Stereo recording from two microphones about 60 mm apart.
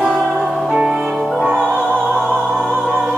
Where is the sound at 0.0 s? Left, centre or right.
Centre.